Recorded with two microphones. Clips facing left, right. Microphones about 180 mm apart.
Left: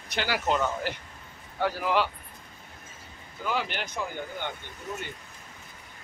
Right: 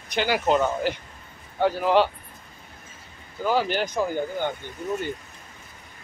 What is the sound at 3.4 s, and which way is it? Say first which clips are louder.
Speech: right 8 dB; 35° right (ahead or behind).